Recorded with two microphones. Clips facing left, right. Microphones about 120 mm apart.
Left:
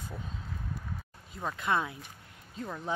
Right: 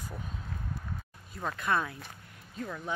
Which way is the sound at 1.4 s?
15° left (ahead or behind).